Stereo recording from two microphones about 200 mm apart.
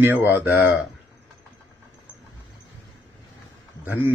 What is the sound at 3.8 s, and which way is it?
Speech, 10° right (ahead or behind).